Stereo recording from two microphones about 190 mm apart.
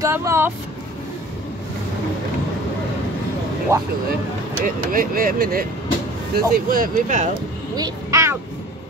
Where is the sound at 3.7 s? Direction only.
15° right (ahead or behind).